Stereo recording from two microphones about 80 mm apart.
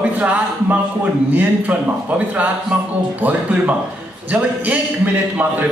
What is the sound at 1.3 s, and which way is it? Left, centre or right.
A man's voice, centre.